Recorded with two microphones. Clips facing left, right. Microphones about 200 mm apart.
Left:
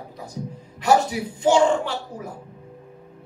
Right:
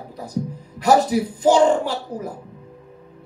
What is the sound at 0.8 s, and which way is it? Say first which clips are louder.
Speech: right 3 dB; 40° right (ahead or behind).